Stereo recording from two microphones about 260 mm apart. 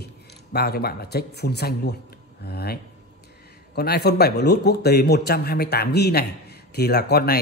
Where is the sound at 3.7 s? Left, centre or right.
Left.